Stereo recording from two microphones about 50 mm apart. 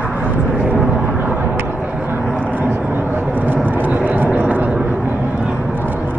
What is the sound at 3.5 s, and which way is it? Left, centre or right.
Vehicle, right.